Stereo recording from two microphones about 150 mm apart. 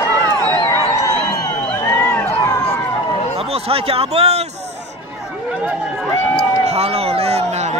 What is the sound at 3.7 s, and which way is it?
Speech, 40° right (ahead or behind).